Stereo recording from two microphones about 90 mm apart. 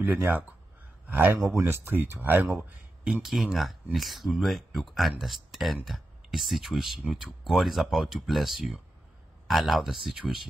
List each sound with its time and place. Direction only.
0.0 s a man's voice: 20° right (ahead or behind)
1.4 s speech: 30° right (ahead or behind)
3.1 s speech: 5° right (ahead or behind)